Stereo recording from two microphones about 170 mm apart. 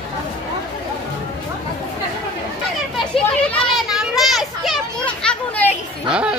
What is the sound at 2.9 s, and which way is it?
Children playing, centre (ahead or behind).